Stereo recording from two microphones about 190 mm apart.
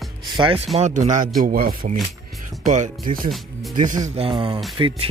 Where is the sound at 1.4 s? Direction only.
50° right (ahead or behind).